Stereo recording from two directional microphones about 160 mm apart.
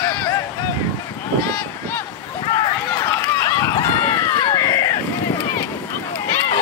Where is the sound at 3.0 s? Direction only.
20° left (ahead or behind).